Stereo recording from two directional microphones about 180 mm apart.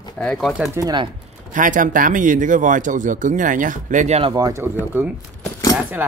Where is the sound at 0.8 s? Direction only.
20° right (ahead or behind).